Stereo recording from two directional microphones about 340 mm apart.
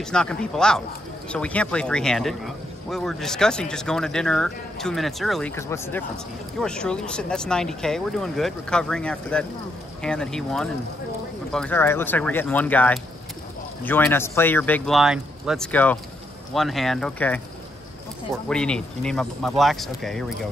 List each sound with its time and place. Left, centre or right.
0.0 s speech: centre